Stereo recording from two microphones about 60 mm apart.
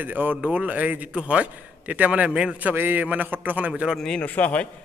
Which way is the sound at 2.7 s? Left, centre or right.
Right.